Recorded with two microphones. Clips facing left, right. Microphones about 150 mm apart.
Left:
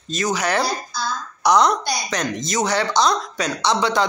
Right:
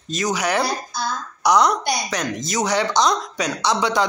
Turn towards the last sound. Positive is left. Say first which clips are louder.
# left 1 dB
turn(degrees=-15)  # may be behind; listen again after turning